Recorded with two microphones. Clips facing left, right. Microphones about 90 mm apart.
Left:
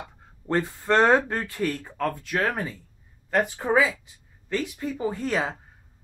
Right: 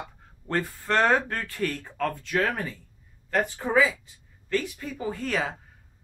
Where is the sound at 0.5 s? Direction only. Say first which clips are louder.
Left 4 dB; 20° left (ahead or behind).